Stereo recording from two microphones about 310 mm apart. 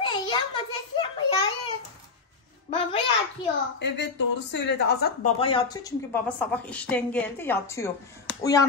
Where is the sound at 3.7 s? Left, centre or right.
Left.